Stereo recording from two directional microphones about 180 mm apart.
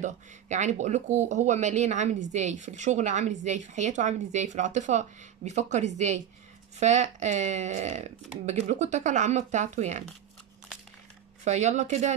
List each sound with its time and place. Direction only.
0.0 s speech: 40° right (ahead or behind)
11.4 s speech: 40° right (ahead or behind)